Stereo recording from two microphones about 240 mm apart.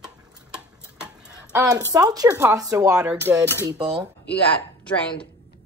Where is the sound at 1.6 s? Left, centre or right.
Centre.